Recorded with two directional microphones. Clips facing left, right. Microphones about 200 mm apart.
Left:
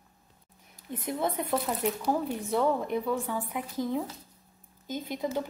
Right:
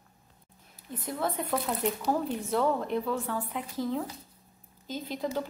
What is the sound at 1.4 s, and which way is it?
Speech, 5° left (ahead or behind).